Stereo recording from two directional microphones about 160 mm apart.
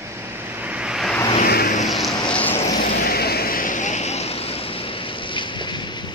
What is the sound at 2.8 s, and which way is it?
Vehicle, 70° left (ahead or behind).